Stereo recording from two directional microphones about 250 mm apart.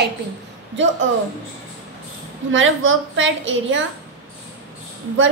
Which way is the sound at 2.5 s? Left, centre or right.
Right.